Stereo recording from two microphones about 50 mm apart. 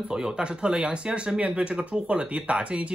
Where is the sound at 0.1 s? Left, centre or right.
Centre.